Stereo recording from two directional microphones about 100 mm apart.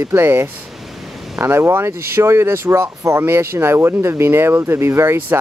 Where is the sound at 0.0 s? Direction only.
25° right (ahead or behind).